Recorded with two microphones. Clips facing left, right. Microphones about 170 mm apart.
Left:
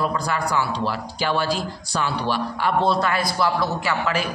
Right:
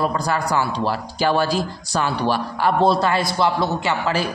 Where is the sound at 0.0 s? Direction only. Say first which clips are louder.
Right 2 dB; 40° right (ahead or behind).